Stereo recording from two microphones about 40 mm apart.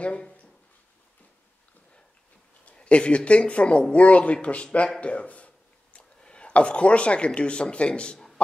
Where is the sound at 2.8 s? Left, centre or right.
Left.